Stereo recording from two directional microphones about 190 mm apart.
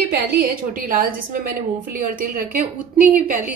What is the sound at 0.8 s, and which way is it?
A woman's voice, 45° right (ahead or behind).